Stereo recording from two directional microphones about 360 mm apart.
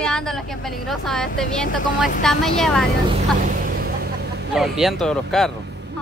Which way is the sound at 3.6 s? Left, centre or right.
Right.